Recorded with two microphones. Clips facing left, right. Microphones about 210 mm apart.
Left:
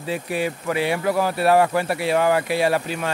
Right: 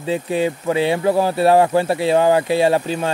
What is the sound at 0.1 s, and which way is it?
Speech, 25° right (ahead or behind).